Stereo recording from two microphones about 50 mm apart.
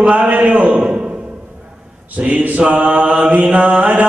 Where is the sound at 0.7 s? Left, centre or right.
Right.